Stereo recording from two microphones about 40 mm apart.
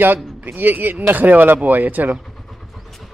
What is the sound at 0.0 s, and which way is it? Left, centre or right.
Speech, right.